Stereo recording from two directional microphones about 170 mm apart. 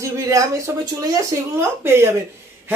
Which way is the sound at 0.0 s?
20° right (ahead or behind).